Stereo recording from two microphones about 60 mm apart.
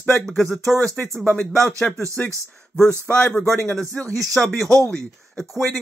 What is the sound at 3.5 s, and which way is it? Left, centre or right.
Speech, centre.